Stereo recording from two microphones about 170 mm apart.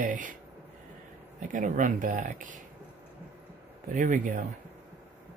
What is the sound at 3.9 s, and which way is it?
Speech, 50° right (ahead or behind).